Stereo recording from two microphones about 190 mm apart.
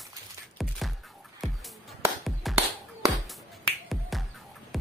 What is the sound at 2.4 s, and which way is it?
Music, centre (ahead or behind).